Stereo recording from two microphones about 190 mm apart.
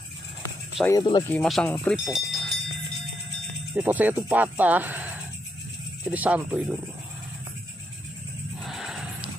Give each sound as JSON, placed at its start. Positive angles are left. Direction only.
{"t": 0.8, "sound": "speech", "side_deg": 20}
{"t": 1.3, "sound": "speech", "side_deg": 5}
{"t": 3.7, "sound": "speech", "side_deg": -10}
{"t": 8.5, "sound": "a sound", "side_deg": 0}